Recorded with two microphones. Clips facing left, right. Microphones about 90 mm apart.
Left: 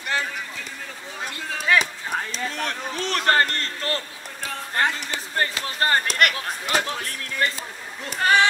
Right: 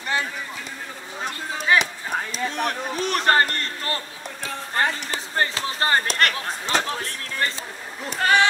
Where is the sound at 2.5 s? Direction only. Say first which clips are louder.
Right 3 dB; 15° right (ahead or behind); by 7.2 s 35° right (ahead or behind).